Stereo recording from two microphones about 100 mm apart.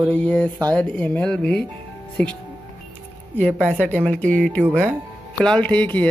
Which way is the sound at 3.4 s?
10° left (ahead or behind).